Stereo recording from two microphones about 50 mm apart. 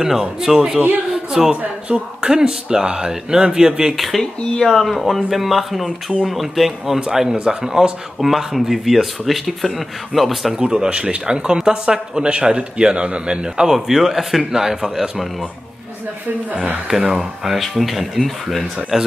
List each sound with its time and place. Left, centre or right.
0.0 s speech: centre
1.1 s a sound: centre
1.6 s speech: centre
3.9 s speech: centre
10.5 s speech: centre
13.7 s speech: centre
16.8 s speech: centre